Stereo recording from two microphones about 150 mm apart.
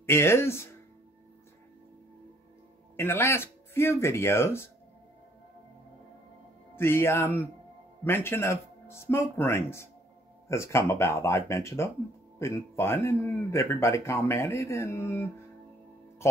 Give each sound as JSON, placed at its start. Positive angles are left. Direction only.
{"t": 0.0, "sound": "speech", "side_deg": 15}
{"t": 3.0, "sound": "speech", "side_deg": 15}
{"t": 6.7, "sound": "speech", "side_deg": 15}